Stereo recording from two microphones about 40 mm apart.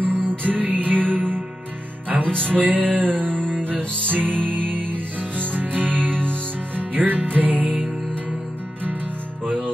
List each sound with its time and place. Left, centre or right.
0.0 s music: right